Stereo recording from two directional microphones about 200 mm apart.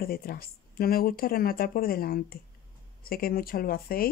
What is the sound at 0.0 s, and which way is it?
Speech, 50° left (ahead or behind).